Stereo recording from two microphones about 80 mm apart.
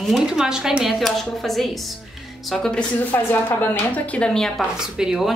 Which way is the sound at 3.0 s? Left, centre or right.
Left.